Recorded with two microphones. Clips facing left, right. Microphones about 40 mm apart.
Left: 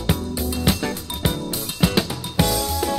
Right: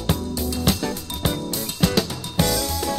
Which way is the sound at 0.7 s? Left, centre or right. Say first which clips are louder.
Left 1 dB; centre.